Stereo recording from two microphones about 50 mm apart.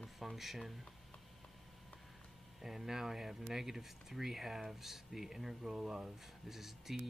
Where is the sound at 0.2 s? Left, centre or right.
Centre.